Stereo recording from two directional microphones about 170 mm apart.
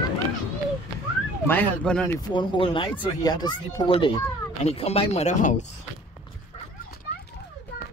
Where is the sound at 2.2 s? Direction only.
25° left (ahead or behind); by 5.7 s 45° left (ahead or behind).